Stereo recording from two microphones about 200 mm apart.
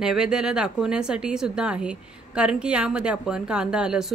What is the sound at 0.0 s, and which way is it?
Speech, 5° right (ahead or behind).